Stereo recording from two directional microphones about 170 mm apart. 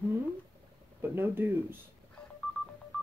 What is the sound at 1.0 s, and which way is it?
Speech, 15° right (ahead or behind).